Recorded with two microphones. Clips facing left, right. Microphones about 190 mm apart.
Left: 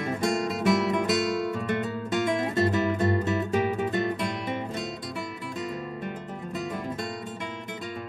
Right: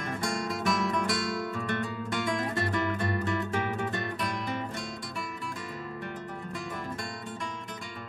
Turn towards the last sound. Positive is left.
turn(degrees=25)  # may be behind; listen again after turning